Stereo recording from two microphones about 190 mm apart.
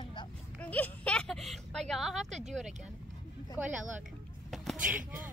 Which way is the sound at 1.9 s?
Centre (ahead or behind).